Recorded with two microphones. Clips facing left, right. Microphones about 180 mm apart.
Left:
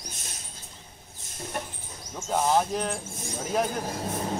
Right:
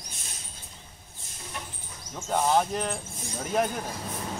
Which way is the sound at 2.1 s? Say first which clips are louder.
Even; centre (ahead or behind).